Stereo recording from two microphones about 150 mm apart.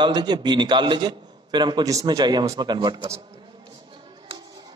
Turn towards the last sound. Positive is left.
turn(degrees=-30)  # may be behind; listen again after turning